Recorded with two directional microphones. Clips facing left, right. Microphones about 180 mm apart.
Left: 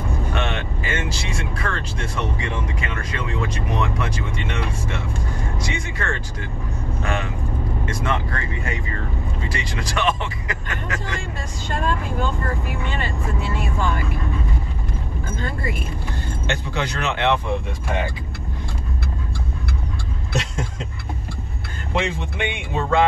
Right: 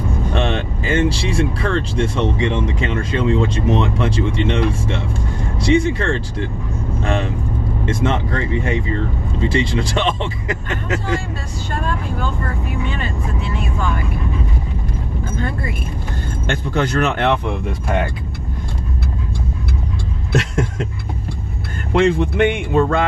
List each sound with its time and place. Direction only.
0.3 s speech: 35° right (ahead or behind)
16.4 s speech: 50° right (ahead or behind)
22.0 s speech: 50° right (ahead or behind)